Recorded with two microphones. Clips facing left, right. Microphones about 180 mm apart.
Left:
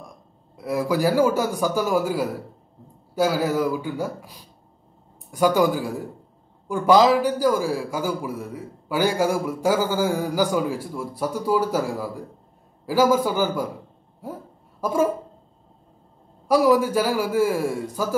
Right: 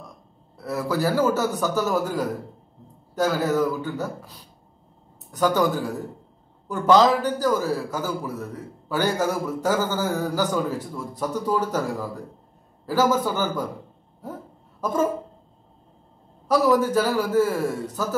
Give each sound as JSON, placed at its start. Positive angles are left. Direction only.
{"t": 0.6, "sound": "a man's voice", "side_deg": 10}
{"t": 14.2, "sound": "a sound", "side_deg": 10}
{"t": 16.4, "sound": "a man's voice", "side_deg": 10}